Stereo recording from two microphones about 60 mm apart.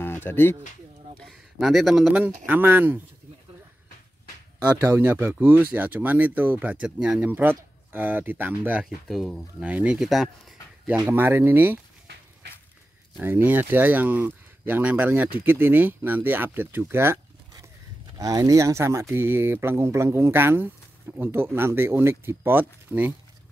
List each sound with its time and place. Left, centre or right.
0.0 s a sound: left
1.2 s a sound: centre
2.1 s speech: right
4.6 s speech: right
8.8 s speech: centre
11.1 s speech: right
13.2 s speech: right
18.1 s speech: right
19.1 s speech: right